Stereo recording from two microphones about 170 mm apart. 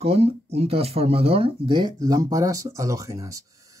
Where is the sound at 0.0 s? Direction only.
35° right (ahead or behind).